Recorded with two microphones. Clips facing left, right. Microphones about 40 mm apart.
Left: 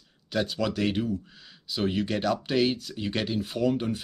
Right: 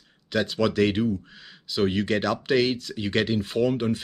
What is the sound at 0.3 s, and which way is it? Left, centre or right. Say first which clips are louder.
Speech: right 4 dB; right.